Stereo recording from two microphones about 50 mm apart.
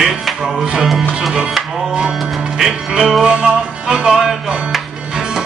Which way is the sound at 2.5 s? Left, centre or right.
Centre.